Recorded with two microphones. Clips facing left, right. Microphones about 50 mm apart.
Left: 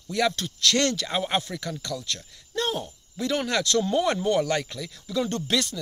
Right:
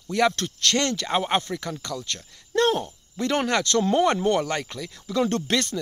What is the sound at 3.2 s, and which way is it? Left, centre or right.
Speech, right.